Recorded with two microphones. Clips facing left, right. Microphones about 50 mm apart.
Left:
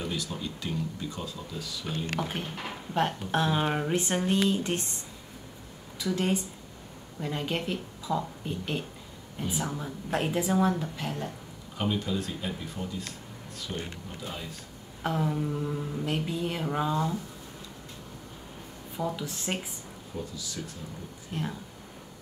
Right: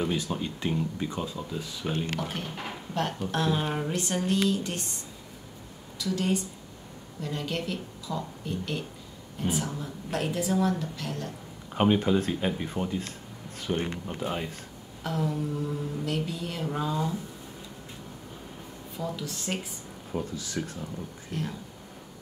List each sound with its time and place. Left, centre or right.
0.0 s speech: right
2.1 s mantra: centre
2.9 s a woman's voice: centre
5.9 s a woman's voice: left
10.8 s mantra: centre
11.7 s speech: right
15.0 s mantra: centre
18.9 s mantra: centre
20.1 s speech: right
21.3 s mantra: centre